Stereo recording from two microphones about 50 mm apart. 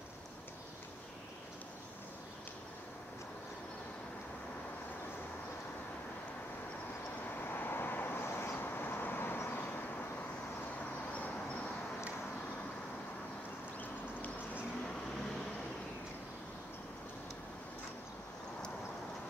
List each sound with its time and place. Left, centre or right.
7.2 s vehicle: left